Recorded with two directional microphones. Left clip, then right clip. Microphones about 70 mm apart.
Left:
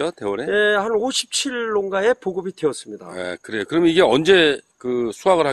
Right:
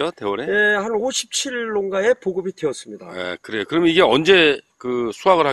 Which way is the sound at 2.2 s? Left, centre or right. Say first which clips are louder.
Even; left.